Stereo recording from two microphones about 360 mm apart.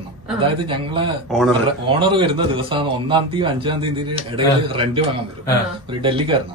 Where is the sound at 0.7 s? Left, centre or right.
Centre.